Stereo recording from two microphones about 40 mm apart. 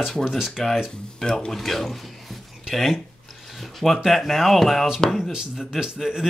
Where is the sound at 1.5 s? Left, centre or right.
Centre.